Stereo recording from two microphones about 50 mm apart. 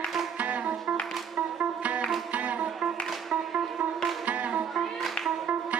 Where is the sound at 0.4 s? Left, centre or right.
Right.